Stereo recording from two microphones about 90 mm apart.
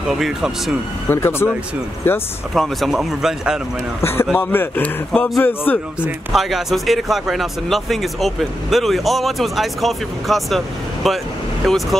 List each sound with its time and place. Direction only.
0.1 s speech: centre (ahead or behind)
1.0 s a man's voice: 25° left (ahead or behind)
2.5 s speech: centre (ahead or behind)
4.0 s a man's voice: 25° left (ahead or behind)
6.3 s speech: centre (ahead or behind)